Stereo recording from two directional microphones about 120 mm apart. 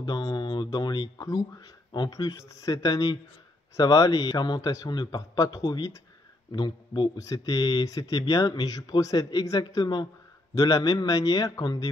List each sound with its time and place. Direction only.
0.0 s speech: 35° left (ahead or behind)
7.2 s speech: 25° left (ahead or behind)